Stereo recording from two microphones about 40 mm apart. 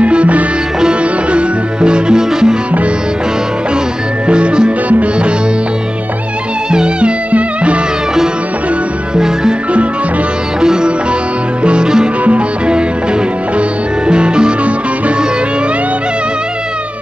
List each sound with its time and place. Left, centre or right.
0.0 s music: right
0.7 s music: right
4.3 s music: right
6.7 s music: right
9.1 s music: centre
10.6 s music: centre